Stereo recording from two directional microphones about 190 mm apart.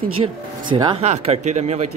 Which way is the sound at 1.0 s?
35° right (ahead or behind).